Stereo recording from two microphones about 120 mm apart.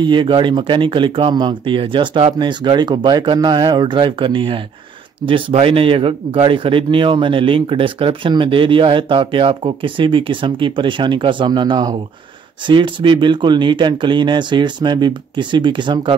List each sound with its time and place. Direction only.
0.0 s speech: 40° right (ahead or behind)